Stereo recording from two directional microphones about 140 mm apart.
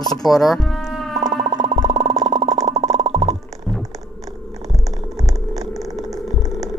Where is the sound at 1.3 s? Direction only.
55° right (ahead or behind).